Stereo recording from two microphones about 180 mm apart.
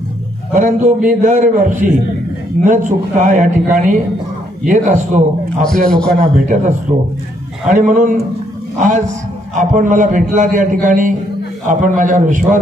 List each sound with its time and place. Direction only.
0.6 s a man's voice: 45° right (ahead or behind)
5.9 s a man's voice: 5° left (ahead or behind)
6.9 s a man's voice: 40° right (ahead or behind)